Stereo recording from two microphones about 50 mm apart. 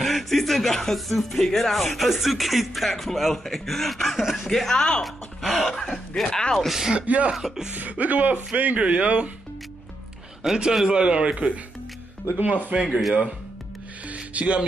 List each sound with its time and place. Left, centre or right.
0.0 s speech: centre
4.2 s speech: centre
4.5 s speech: centre
6.7 s speech: centre
7.0 s a man's voice: right
7.3 s speech: centre
7.7 s a man's voice: right
10.4 s speech: centre
10.9 s a man's voice: right
12.7 s a man's voice: right
14.0 s music: right